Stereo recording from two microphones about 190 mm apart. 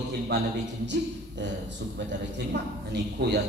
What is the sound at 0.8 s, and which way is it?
A man's voice, 70° right (ahead or behind).